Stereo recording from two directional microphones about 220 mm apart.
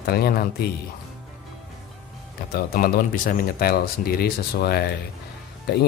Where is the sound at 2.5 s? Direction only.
40° left (ahead or behind).